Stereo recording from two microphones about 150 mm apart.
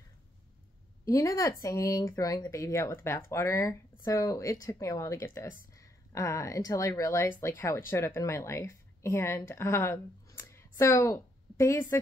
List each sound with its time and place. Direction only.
1.0 s a woman's voice: 20° left (ahead or behind)